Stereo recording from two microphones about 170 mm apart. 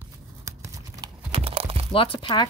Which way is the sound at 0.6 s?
20° right (ahead or behind).